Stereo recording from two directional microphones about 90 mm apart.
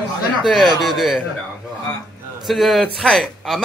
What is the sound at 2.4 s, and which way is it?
Speech, centre (ahead or behind).